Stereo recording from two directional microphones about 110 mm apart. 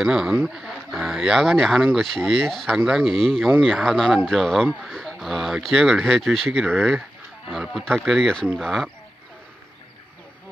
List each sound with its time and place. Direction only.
0.0 s speech: 5° right (ahead or behind)
6.6 s speech: 20° right (ahead or behind)
6.9 s speech: centre (ahead or behind)
8.2 s speech: 5° left (ahead or behind)